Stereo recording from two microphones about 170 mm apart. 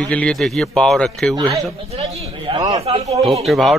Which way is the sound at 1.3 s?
25° right (ahead or behind).